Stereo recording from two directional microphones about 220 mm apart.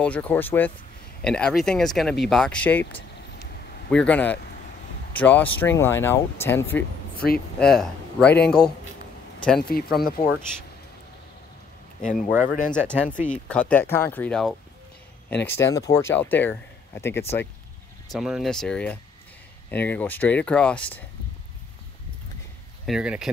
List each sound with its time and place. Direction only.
0.0 s speech: 5° left (ahead or behind)
3.9 s speech: 5° left (ahead or behind)
7.2 s a man's voice: 45° left (ahead or behind)
7.5 s speech: 5° left (ahead or behind)
9.7 s speech: 45° left (ahead or behind)
12.1 s speech: 5° right (ahead or behind)
12.8 s speech: 5° left (ahead or behind)
13.1 s speech: 35° left (ahead or behind)
13.5 s speech: 5° left (ahead or behind)
18.1 s speech: centre (ahead or behind)
22.8 s speech: 5° right (ahead or behind)